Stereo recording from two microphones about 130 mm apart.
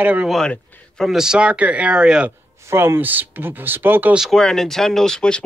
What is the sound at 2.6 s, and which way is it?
Speech, 20° right (ahead or behind).